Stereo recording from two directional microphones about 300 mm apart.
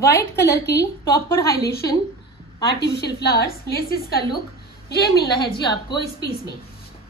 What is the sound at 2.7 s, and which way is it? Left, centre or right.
A woman's voice, left.